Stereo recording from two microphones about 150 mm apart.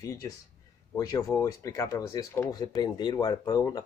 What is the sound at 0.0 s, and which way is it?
Speech, 20° left (ahead or behind).